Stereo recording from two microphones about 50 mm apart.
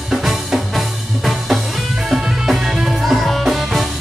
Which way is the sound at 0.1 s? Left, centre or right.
Centre.